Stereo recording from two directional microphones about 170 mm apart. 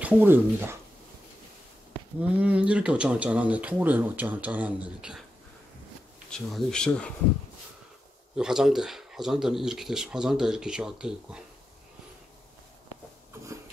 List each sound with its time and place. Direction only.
0.0 s speech: 10° right (ahead or behind)
2.3 s speech: 5° right (ahead or behind)
6.3 s speech: 5° left (ahead or behind)
8.4 s speech: 5° right (ahead or behind)